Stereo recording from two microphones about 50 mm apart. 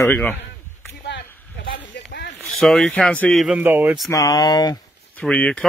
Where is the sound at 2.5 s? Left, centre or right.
Centre.